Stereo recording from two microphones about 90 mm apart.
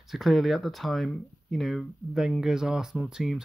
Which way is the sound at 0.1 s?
Centre (ahead or behind).